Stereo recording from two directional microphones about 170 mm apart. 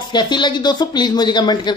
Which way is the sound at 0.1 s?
25° left (ahead or behind).